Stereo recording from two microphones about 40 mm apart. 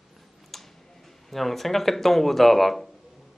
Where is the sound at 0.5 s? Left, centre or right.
Centre.